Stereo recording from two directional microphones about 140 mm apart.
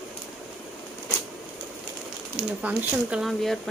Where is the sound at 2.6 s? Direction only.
5° right (ahead or behind).